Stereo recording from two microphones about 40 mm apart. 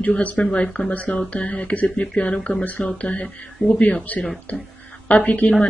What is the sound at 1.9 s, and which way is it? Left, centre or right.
Speech, left.